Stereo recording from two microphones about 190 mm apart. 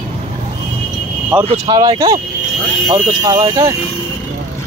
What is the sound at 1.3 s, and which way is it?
Speech, 5° right (ahead or behind).